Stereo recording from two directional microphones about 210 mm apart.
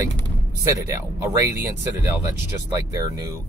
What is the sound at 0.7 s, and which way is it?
Speech, 15° right (ahead or behind).